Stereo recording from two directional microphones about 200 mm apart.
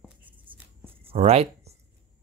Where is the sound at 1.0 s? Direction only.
30° right (ahead or behind).